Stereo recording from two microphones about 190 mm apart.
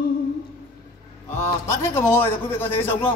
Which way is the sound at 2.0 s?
10° left (ahead or behind).